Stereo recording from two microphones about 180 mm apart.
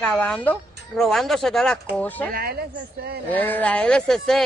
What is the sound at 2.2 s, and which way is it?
Speech, 55° right (ahead or behind).